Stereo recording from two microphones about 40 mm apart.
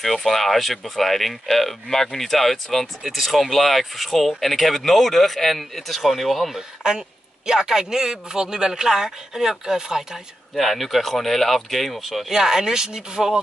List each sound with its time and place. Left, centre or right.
0.0 s speech: centre
6.5 s speech: centre
10.6 s speech: centre
12.3 s speech: centre